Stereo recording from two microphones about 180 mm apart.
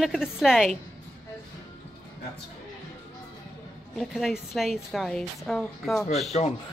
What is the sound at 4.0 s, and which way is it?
A woman's voice, centre (ahead or behind).